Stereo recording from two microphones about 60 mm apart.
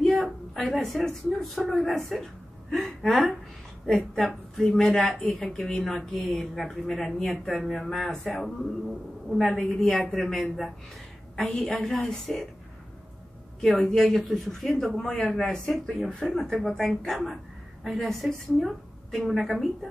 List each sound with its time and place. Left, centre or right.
0.2 s a woman's voice: centre
3.0 s speech: centre
10.2 s speech: centre
13.6 s speech: centre